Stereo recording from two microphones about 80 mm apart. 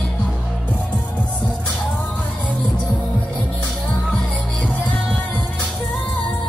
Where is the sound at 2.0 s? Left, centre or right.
Centre.